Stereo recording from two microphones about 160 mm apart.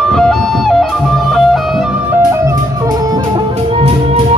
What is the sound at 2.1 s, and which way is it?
Music, 20° right (ahead or behind).